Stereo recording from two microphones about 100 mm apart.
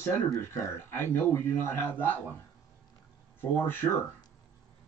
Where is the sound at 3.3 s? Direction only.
20° left (ahead or behind).